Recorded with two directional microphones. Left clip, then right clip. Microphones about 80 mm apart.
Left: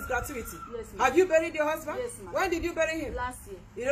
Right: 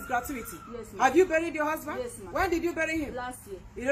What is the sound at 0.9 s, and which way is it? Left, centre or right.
A woman's voice, right.